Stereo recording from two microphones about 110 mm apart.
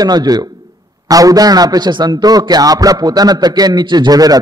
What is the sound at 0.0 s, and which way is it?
A man's voice, 35° right (ahead or behind).